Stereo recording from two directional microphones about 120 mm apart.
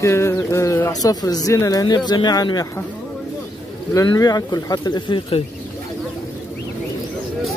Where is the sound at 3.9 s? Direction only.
30° left (ahead or behind).